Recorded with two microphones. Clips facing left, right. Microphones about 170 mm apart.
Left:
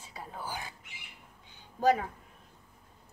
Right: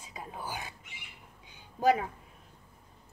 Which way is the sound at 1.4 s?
10° right (ahead or behind).